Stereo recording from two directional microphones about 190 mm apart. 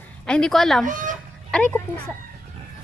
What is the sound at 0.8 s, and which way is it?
Chicken, 45° right (ahead or behind).